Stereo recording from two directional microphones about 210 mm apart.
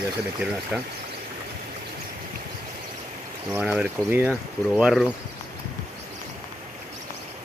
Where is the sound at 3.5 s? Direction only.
5° right (ahead or behind).